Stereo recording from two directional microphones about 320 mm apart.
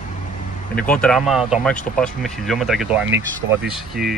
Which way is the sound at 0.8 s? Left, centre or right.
Centre.